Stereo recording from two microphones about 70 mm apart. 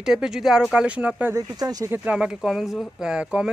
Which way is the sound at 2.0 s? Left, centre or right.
Centre.